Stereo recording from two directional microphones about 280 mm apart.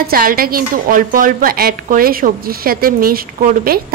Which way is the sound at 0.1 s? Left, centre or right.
Right.